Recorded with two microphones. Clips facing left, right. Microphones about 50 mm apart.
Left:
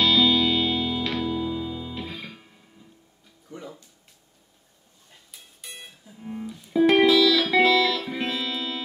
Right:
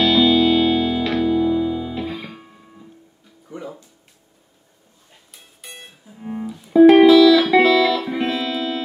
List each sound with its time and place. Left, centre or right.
0.0 s music: centre
2.3 s music: right
3.4 s music: centre
5.7 s music: right
6.4 s music: centre